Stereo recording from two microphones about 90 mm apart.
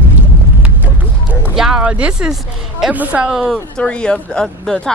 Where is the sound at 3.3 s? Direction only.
5° right (ahead or behind).